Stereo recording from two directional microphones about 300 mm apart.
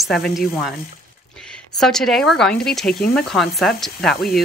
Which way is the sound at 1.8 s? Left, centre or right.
Centre.